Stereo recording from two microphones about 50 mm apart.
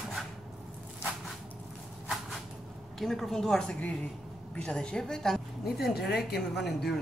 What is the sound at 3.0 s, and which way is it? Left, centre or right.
A woman's voice, centre.